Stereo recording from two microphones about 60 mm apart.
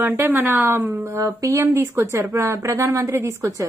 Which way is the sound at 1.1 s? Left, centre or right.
Right.